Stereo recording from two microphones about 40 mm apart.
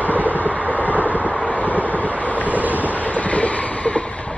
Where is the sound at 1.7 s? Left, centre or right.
Right.